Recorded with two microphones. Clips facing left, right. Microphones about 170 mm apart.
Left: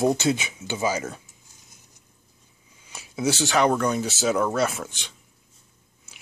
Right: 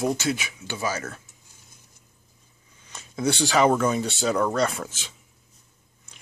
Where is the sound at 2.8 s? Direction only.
10° left (ahead or behind).